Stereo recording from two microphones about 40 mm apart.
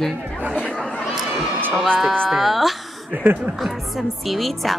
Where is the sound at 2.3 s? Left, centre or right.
Centre.